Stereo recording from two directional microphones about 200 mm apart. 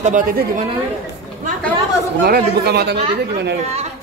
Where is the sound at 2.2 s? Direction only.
50° right (ahead or behind).